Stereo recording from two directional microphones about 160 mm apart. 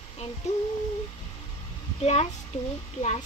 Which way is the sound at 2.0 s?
40° left (ahead or behind).